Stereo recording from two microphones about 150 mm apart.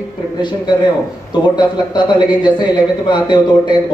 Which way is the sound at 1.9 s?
30° left (ahead or behind).